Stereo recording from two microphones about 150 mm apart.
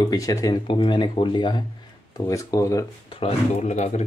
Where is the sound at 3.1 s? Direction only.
40° left (ahead or behind).